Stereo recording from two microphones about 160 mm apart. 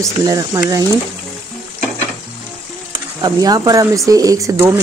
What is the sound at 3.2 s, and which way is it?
Speech, 25° right (ahead or behind).